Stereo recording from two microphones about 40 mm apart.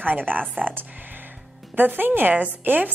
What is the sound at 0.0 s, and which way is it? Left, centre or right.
A woman's voice, right.